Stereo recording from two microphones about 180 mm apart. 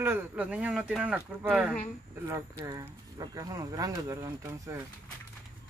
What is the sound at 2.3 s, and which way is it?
Speech, 20° right (ahead or behind).